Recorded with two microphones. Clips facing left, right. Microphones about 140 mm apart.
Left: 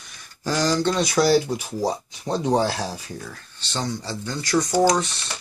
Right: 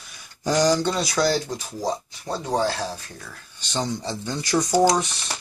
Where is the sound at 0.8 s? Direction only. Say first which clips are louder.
Left 3 dB; centre (ahead or behind); by 2.7 s 20° left (ahead or behind).